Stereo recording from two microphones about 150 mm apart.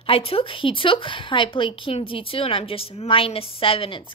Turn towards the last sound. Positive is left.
turn(degrees=35)  # may be behind; listen again after turning